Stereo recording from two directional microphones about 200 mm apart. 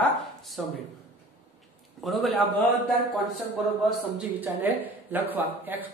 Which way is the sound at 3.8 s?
5° right (ahead or behind).